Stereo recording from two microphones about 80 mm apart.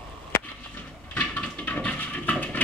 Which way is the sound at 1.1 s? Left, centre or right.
Centre.